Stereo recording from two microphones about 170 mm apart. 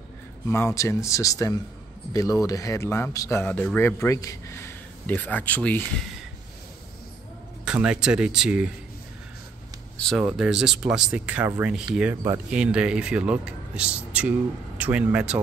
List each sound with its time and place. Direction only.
0.5 s a man's voice: 15° left (ahead or behind)
7.6 s speech: 5° right (ahead or behind)
9.9 s speech: 5° left (ahead or behind)